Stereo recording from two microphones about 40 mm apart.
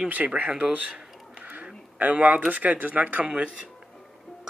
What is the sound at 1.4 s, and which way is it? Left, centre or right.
Duck, right.